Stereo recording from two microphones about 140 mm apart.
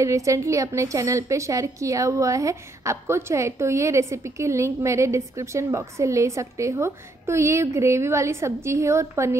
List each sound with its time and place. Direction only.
0.0 s a woman's voice: 20° right (ahead or behind)